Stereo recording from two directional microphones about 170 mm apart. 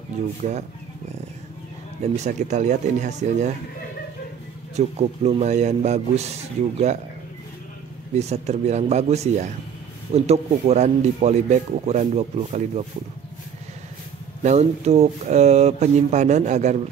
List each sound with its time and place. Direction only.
0.2 s speech: 40° right (ahead or behind)
2.1 s speech: 40° right (ahead or behind)
4.7 s speech: 40° right (ahead or behind)
8.1 s speech: 40° right (ahead or behind)
14.4 s speech: 40° right (ahead or behind)